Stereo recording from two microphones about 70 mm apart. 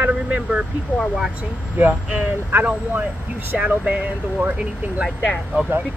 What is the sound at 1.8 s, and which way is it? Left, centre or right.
Speech, right.